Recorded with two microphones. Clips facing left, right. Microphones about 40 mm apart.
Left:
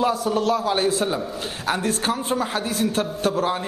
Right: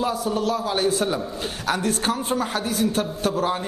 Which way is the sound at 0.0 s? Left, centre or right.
Left.